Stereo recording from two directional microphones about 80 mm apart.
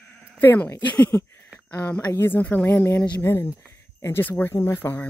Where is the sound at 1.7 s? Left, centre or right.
Left.